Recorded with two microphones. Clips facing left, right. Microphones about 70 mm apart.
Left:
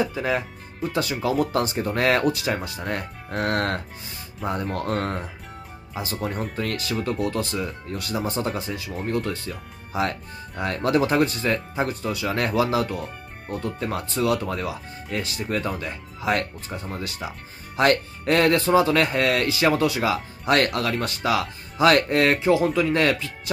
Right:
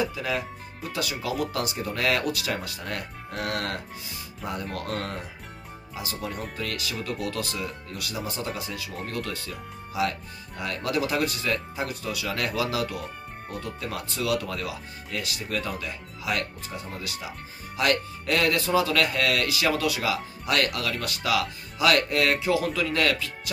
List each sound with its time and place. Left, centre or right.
0.0 s speech: left